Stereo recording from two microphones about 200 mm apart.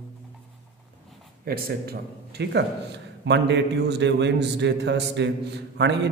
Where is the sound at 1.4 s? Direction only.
50° right (ahead or behind).